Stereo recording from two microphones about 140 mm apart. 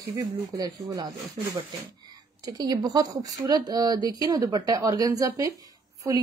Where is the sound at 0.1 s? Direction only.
25° right (ahead or behind).